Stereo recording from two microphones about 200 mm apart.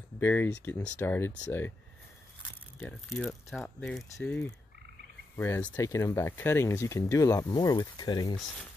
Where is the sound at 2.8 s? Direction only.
10° left (ahead or behind).